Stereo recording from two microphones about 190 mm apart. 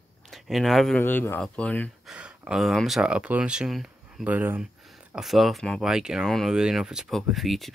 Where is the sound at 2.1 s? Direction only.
5° right (ahead or behind).